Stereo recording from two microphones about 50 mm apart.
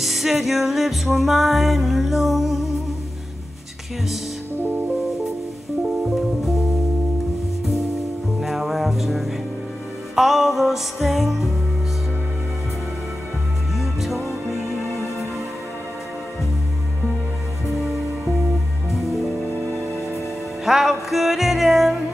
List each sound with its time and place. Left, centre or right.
0.0 s music: centre
5.8 s music: centre
6.1 s music: centre
8.4 s music: centre
13.7 s music: centre
18.9 s music: centre
20.6 s music: centre